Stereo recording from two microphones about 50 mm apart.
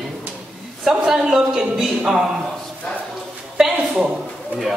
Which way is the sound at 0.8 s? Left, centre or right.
Centre.